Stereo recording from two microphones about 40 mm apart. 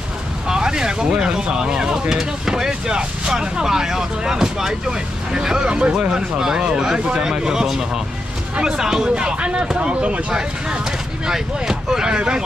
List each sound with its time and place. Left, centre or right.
0.5 s speech: centre
11.2 s speech: centre